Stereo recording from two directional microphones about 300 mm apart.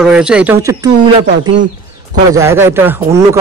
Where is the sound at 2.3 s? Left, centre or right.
Centre.